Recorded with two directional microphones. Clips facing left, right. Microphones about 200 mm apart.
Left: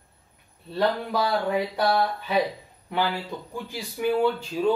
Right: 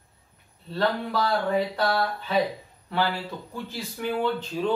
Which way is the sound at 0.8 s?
15° left (ahead or behind).